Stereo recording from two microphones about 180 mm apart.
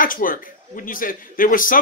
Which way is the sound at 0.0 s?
50° left (ahead or behind).